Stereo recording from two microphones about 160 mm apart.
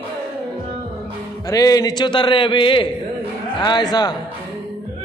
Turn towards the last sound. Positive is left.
turn(degrees=25)  # may be behind; listen again after turning